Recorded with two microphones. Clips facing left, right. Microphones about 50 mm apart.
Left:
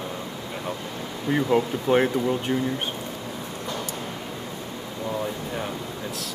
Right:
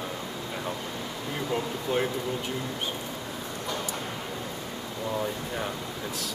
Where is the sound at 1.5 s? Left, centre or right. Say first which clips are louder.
Left 7 dB; left.